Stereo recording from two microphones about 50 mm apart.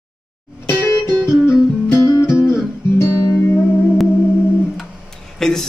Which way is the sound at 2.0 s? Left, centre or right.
Left.